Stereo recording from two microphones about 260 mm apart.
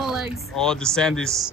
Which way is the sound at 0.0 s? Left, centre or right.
Centre.